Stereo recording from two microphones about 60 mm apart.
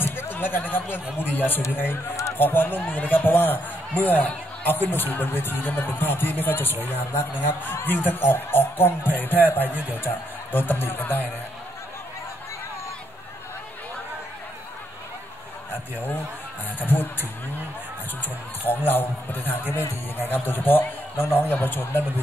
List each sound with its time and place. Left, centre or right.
0.0 s a sound: left
1.1 s speech: left
16.8 s speech: left
18.7 s speech: left